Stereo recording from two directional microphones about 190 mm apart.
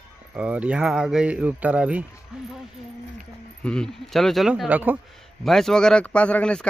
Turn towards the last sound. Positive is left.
turn(degrees=5)  # may be behind; listen again after turning